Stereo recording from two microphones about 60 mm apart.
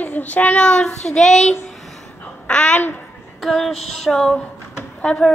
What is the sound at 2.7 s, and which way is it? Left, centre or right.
Speech, left.